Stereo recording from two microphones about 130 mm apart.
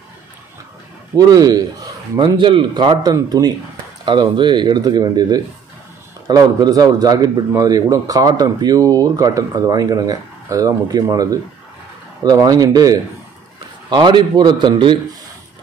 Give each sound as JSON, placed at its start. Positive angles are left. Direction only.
{"t": 1.1, "sound": "a man's voice", "side_deg": -30}
{"t": 2.1, "sound": "a man's voice", "side_deg": -40}